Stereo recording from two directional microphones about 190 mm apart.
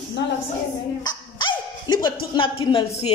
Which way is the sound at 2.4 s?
30° left (ahead or behind).